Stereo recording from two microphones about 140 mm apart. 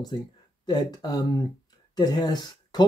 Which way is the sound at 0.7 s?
30° left (ahead or behind).